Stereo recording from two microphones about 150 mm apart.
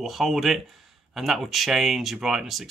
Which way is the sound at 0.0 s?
Centre (ahead or behind).